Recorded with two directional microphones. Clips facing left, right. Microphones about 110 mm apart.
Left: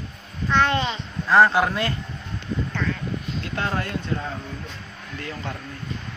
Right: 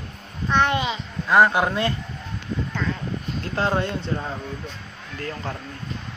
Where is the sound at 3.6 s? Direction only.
25° right (ahead or behind).